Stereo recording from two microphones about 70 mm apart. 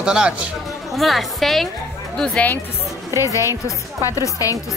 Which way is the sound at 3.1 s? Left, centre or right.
Left.